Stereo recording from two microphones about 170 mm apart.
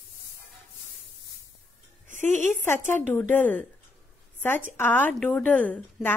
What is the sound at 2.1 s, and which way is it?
Music, 45° right (ahead or behind).